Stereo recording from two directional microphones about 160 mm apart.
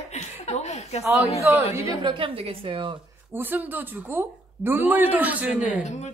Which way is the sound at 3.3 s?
10° right (ahead or behind).